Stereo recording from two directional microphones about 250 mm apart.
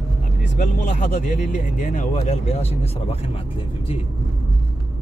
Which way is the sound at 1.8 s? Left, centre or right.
Left.